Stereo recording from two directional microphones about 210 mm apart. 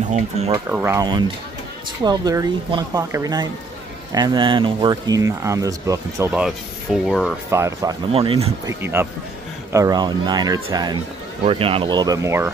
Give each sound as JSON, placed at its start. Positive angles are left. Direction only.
{"t": 0.5, "sound": "speech", "side_deg": -10}
{"t": 7.5, "sound": "speech", "side_deg": -15}
{"t": 8.1, "sound": "speech", "side_deg": -25}
{"t": 8.6, "sound": "speech", "side_deg": -10}